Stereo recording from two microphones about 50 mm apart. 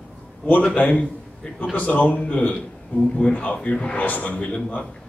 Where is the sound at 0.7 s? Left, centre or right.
Left.